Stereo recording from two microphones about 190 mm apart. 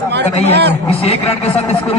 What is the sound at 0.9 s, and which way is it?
Speech, 30° left (ahead or behind).